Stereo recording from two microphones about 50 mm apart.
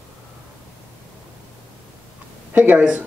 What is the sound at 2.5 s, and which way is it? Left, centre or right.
Speech, right.